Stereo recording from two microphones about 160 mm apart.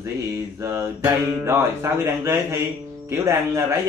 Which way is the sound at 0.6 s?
15° right (ahead or behind).